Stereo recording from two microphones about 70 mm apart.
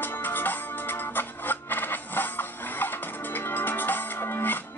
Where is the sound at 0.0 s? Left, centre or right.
Left.